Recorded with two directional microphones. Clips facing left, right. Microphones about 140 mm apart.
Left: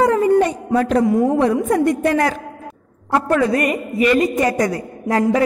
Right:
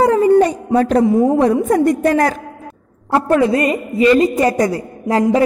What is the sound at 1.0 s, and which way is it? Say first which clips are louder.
A woman's voice: right 3 dB; 25° right (ahead or behind).